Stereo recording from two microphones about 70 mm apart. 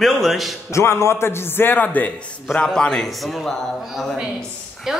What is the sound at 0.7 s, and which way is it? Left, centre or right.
A man's voice, left.